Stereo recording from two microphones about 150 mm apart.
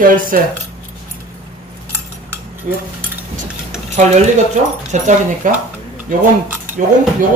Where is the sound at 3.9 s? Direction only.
55° right (ahead or behind).